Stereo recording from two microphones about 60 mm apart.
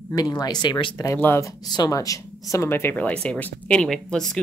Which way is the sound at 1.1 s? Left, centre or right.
Left.